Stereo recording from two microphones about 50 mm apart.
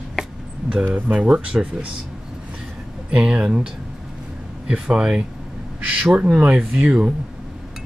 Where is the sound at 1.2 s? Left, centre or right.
Centre.